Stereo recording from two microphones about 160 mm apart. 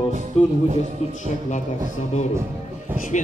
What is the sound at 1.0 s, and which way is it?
Speech, 45° left (ahead or behind).